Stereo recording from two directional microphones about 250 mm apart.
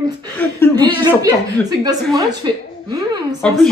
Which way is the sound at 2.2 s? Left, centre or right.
Centre.